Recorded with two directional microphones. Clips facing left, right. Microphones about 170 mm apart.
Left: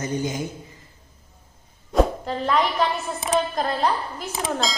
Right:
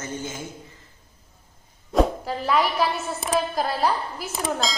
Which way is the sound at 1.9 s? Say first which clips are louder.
Left 1 dB; 5° right (ahead or behind).